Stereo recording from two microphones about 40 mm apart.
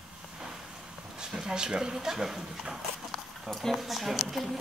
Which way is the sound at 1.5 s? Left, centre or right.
Centre.